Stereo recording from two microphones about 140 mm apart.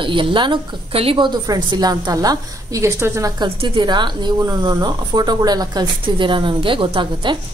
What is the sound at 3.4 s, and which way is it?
A woman's voice, 35° right (ahead or behind).